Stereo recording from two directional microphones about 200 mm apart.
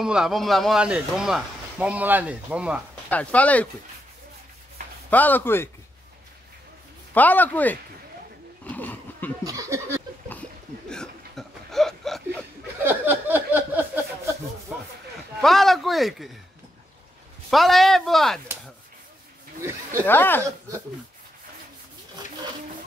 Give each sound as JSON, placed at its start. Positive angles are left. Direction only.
{"t": 0.0, "sound": "speech", "side_deg": -5}
{"t": 3.1, "sound": "speech", "side_deg": 5}
{"t": 5.1, "sound": "speech", "side_deg": 10}
{"t": 7.2, "sound": "speech", "side_deg": 10}
{"t": 8.6, "sound": "a sound", "side_deg": 10}
{"t": 9.4, "sound": "speech", "side_deg": -15}
{"t": 10.9, "sound": "a sound", "side_deg": 5}
{"t": 12.8, "sound": "a sound", "side_deg": -10}
{"t": 15.4, "sound": "speech", "side_deg": 0}
{"t": 17.5, "sound": "speech", "side_deg": 0}
{"t": 19.6, "sound": "speech", "side_deg": -15}
{"t": 20.1, "sound": "speech", "side_deg": 10}